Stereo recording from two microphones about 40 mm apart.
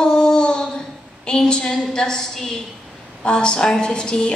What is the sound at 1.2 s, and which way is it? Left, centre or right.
A woman's voice, left.